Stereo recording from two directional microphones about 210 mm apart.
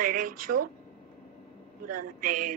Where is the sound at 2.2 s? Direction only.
40° right (ahead or behind).